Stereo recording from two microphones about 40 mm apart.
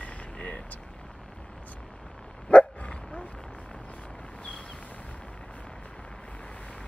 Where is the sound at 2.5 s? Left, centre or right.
Left.